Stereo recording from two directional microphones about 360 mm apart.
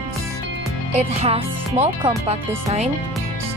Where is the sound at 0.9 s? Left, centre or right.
Centre.